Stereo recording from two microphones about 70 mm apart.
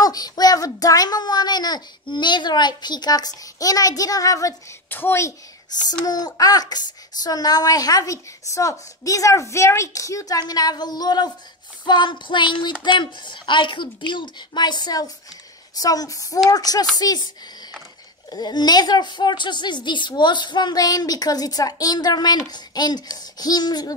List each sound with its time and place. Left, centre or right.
0.0 s a child's voice: left
4.8 s a child's voice: left
5.7 s a child's voice: left
10.5 s a child's voice: left
15.7 s a child's voice: left
18.3 s a woman's voice: left